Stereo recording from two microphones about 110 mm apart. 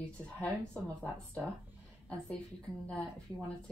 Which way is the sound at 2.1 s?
10° left (ahead or behind).